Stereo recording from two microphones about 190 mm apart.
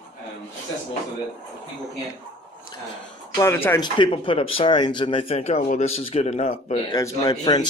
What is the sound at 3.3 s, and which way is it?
Speech, 10° left (ahead or behind).